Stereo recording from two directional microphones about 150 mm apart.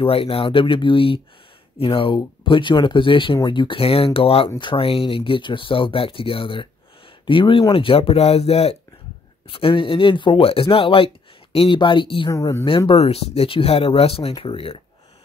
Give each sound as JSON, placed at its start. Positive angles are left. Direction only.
{"t": 0.0, "sound": "speech", "side_deg": 40}
{"t": 12.3, "sound": "speech", "side_deg": 20}
{"t": 12.6, "sound": "speech", "side_deg": 35}